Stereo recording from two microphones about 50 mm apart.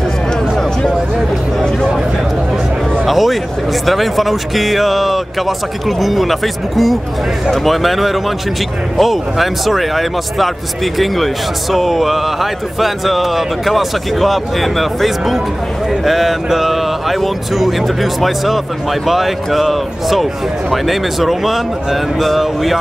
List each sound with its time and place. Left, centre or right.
3.1 s a sound: centre
3.8 s speech: centre
11.7 s speech: centre